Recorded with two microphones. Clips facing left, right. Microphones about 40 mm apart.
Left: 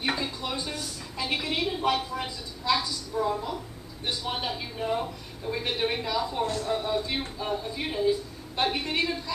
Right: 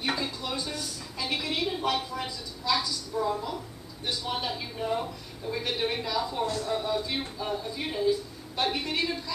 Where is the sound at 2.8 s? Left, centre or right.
Left.